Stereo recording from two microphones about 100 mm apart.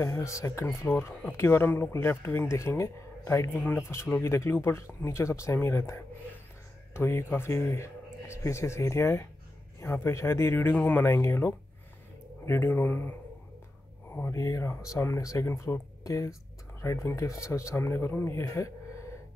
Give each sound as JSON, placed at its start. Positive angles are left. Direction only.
{"t": 0.0, "sound": "speech", "side_deg": 30}
{"t": 14.1, "sound": "speech", "side_deg": 25}